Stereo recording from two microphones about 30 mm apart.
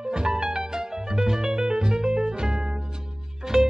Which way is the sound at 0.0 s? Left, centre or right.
Right.